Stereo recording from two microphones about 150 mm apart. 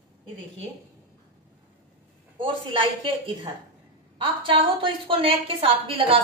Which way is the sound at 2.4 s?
35° right (ahead or behind).